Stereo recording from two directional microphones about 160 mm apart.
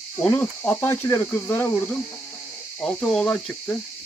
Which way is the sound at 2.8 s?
5° left (ahead or behind).